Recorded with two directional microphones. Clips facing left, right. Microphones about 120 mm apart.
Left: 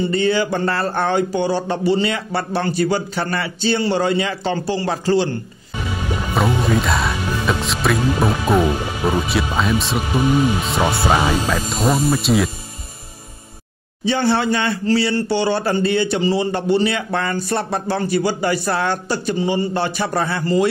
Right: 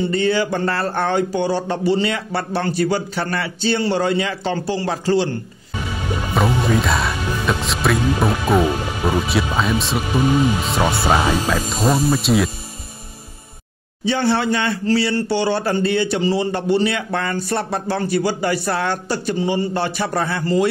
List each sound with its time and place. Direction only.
0.1 s a man's voice: 20° left (ahead or behind)
6.3 s speech: centre (ahead or behind)
14.0 s a man's voice: 25° left (ahead or behind)